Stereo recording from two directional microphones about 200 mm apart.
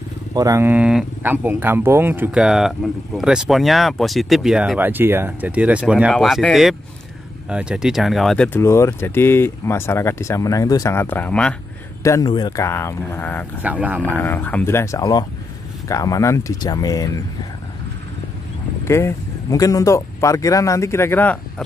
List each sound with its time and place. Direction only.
0.3 s speech: 15° right (ahead or behind); by 8.5 s centre (ahead or behind)
8.5 s speech: 15° left (ahead or behind)
13.6 s speech: 5° right (ahead or behind)
14.0 s speech: 10° left (ahead or behind)
18.9 s speech: 15° left (ahead or behind)